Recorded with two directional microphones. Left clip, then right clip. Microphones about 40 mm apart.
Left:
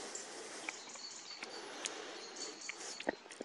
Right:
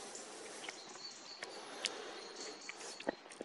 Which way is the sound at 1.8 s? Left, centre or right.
Right.